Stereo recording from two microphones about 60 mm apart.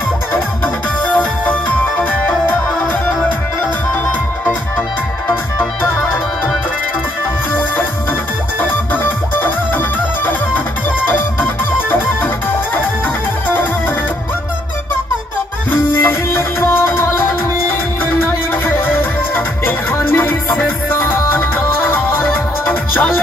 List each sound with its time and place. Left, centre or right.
1.0 s music: left
5.3 s music: left
8.5 s music: left
15.9 s music: left